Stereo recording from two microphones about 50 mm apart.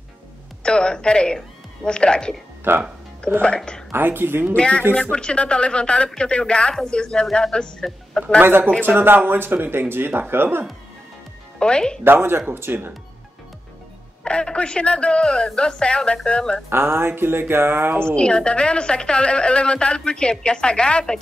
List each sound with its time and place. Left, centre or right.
0.7 s a woman's voice: centre
2.7 s speech: right
3.4 s a woman's voice: centre
3.9 s speech: right
4.6 s a woman's voice: left
8.4 s speech: right
11.6 s a woman's voice: centre
12.0 s speech: right
14.2 s a woman's voice: centre
16.6 s speech: right
18.1 s a woman's voice: centre